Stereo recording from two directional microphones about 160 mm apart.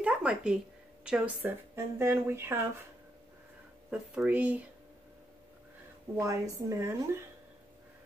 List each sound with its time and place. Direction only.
0.0 s a sound: 5° right (ahead or behind)
1.0 s speech: 5° right (ahead or behind)
3.9 s speech: 5° right (ahead or behind)
6.1 s speech: 20° right (ahead or behind)